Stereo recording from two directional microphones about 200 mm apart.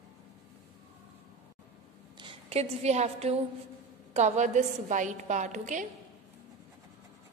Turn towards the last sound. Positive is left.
turn(degrees=-35)  # may be behind; listen again after turning